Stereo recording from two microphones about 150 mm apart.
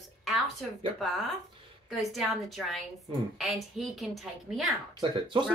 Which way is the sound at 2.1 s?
Centre (ahead or behind).